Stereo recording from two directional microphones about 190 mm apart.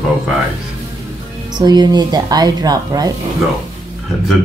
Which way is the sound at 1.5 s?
20° right (ahead or behind).